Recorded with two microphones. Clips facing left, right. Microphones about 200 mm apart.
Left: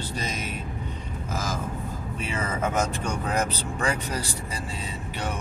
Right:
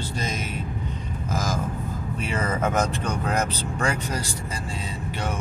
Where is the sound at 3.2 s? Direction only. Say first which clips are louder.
Even; 50° right (ahead or behind).